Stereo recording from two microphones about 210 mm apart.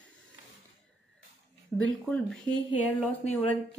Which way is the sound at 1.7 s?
10° left (ahead or behind).